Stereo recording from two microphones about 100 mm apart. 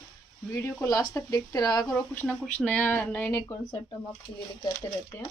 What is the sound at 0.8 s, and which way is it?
Speech, 35° left (ahead or behind).